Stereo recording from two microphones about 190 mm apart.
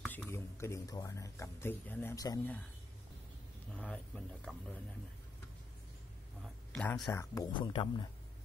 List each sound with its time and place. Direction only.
0.0 s speech: 10° left (ahead or behind)
3.7 s speech: 5° left (ahead or behind)
6.4 s speech: 5° left (ahead or behind); by 8.1 s 25° left (ahead or behind)